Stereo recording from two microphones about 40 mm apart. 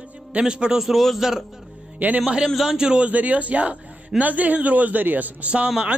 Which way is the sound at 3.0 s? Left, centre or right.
Right.